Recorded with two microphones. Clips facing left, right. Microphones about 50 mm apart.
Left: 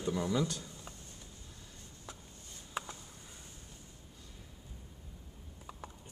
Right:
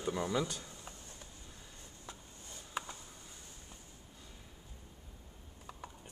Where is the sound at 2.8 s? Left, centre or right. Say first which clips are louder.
Left 1 dB; centre.